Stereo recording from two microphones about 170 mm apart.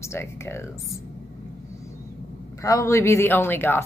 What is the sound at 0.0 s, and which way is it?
Speech, 15° left (ahead or behind).